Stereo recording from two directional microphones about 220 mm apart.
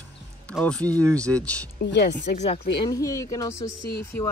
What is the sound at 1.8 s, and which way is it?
Speech, 50° left (ahead or behind).